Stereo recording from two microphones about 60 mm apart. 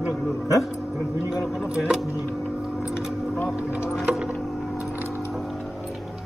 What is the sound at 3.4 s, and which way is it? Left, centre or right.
Speech, centre.